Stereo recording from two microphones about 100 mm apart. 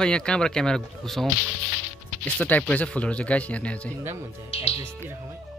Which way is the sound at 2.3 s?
15° left (ahead or behind).